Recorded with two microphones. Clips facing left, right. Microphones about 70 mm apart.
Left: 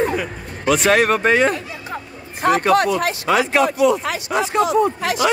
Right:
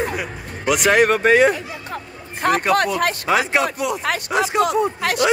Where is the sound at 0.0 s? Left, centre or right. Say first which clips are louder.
Left 4 dB; centre.